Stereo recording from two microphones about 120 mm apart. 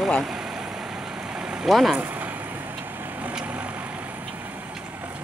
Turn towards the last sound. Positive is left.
turn(degrees=-10)  # may be behind; listen again after turning